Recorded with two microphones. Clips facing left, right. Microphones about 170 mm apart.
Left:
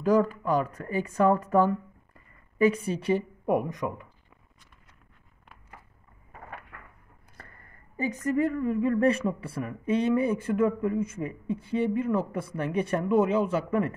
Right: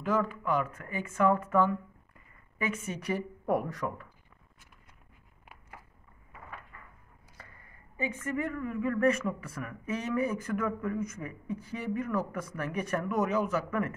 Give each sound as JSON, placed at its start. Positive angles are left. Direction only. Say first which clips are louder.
{"t": 0.0, "sound": "a woman's voice", "louder": "left 7 dB", "side_deg": 40}
{"t": 6.7, "sound": "a sound", "louder": "left 4 dB", "side_deg": 75}
{"t": 8.0, "sound": "a woman's voice", "louder": "left 7 dB", "side_deg": 40}